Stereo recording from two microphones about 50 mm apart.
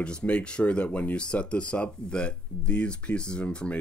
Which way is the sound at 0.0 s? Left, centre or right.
Left.